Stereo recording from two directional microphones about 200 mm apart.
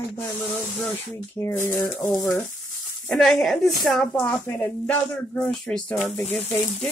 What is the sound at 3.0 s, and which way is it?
Speech, centre (ahead or behind).